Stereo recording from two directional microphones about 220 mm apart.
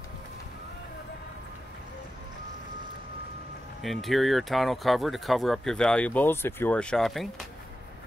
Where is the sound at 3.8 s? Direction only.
Centre (ahead or behind).